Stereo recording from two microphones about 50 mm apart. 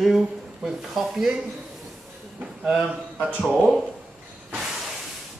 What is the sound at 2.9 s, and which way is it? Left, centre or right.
Speech, right.